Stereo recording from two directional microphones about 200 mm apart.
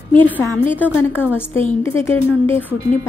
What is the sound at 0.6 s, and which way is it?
Speech, 10° left (ahead or behind).